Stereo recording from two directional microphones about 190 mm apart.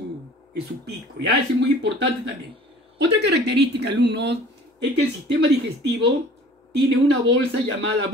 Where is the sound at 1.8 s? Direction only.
65° right (ahead or behind).